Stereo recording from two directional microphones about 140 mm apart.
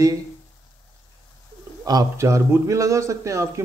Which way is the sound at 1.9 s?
25° right (ahead or behind).